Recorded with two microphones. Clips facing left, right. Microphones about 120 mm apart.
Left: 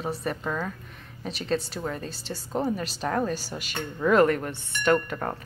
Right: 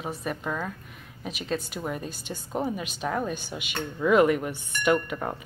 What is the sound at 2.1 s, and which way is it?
Speech, 30° left (ahead or behind).